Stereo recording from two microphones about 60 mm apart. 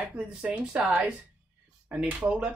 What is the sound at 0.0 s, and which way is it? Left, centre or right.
Speech, centre.